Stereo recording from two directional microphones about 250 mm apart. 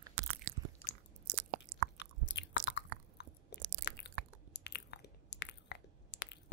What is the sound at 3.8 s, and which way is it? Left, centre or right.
Chewing, left.